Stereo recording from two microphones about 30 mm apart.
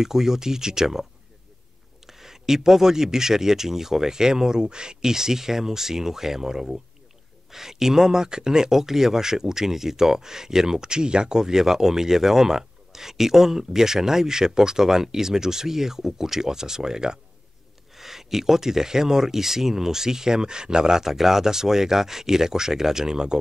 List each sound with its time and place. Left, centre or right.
0.0 s speech: centre
2.0 s speech: centre
17.9 s speech: centre
21.0 s speech: centre